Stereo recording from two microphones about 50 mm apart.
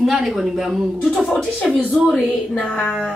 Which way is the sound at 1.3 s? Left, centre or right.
Centre.